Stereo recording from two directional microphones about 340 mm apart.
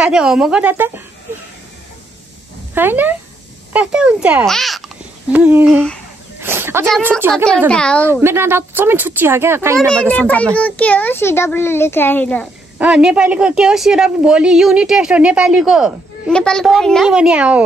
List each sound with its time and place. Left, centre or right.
0.0 s a child's voice: centre
2.7 s a child's voice: centre